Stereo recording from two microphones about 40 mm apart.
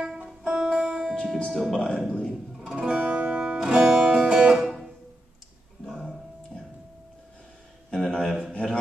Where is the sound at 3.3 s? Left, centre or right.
Centre.